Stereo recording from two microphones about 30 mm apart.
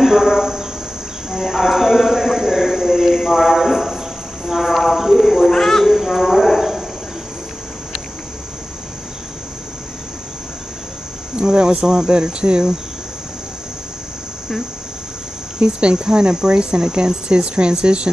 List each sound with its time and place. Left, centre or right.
0.0 s cricket: centre
1.3 s music: centre
2.2 s a sound: centre
4.6 s clip-clop: centre
5.2 s a sound: centre
11.3 s speech: right
12.2 s cricket: right
15.6 s speech: right